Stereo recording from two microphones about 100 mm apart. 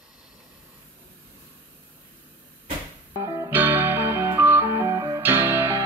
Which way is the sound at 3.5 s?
20° right (ahead or behind).